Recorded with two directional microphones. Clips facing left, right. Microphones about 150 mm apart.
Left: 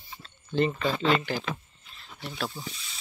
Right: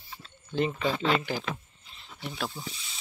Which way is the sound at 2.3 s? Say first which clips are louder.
Left 1 dB; 5° right (ahead or behind).